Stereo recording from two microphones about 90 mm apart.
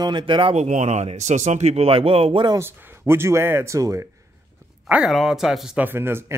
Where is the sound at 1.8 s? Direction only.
90° right.